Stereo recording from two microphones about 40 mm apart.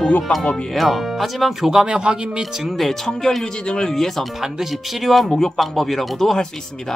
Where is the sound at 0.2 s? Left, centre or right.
Centre.